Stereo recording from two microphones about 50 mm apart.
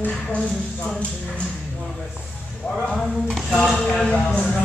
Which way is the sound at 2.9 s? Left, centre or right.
Centre.